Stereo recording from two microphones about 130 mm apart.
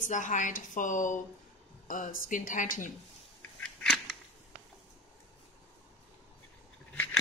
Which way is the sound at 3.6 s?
5° left (ahead or behind).